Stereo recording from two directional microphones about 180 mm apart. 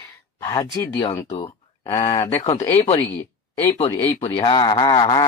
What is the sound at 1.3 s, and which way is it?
Speech, 25° left (ahead or behind).